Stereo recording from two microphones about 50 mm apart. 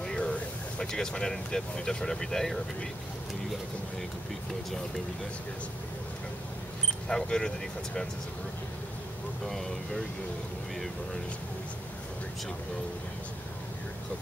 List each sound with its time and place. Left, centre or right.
0.0 s speech: centre
7.1 s speech: centre
9.5 s speech: centre